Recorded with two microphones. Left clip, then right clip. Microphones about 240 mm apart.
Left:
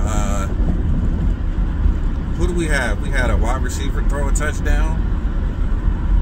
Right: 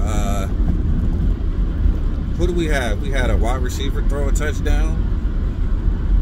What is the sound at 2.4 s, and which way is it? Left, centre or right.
Speech, left.